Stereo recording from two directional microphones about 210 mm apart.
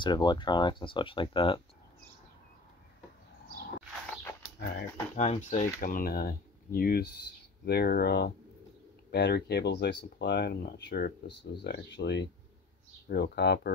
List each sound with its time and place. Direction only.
0.0 s speech: 20° left (ahead or behind)
4.6 s speech: 55° left (ahead or behind)
5.1 s speech: 35° left (ahead or behind); by 13.7 s 50° left (ahead or behind)